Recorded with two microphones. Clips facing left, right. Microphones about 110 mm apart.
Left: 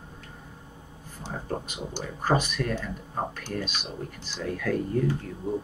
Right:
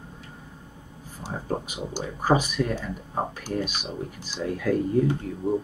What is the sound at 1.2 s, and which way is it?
Speech, 10° right (ahead or behind).